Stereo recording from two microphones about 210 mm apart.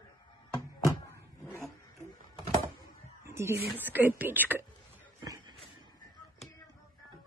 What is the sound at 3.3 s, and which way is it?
Speech, 10° right (ahead or behind).